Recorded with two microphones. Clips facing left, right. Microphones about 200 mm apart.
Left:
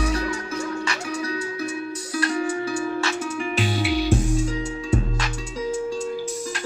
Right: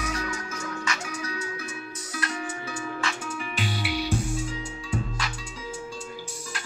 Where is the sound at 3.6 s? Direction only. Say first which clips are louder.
Left 7 dB; 90° left.